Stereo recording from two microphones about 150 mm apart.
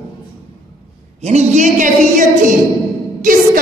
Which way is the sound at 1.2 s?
50° right (ahead or behind).